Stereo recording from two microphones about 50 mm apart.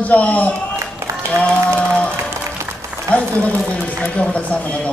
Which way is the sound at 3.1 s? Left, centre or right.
Left.